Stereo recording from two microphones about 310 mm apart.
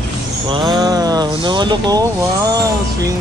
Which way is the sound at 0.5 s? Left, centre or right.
Centre.